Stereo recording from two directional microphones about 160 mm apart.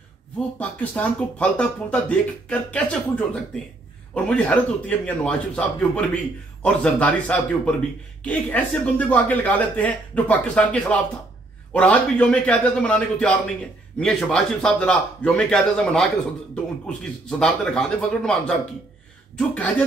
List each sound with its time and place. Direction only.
0.6 s a man's voice: 5° left (ahead or behind)